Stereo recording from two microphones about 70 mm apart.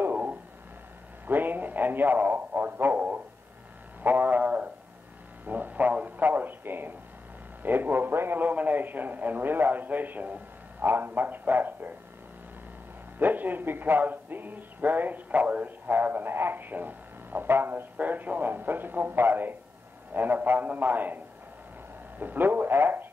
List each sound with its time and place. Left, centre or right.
0.0 s a sound: right
7.6 s speech: right
13.2 s speech: right
22.2 s speech: right